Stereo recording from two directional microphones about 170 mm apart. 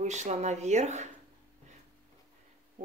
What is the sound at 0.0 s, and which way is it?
Speech, 45° right (ahead or behind).